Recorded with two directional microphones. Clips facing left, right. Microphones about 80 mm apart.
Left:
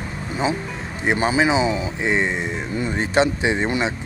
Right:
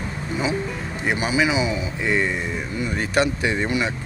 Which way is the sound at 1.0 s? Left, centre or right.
Left.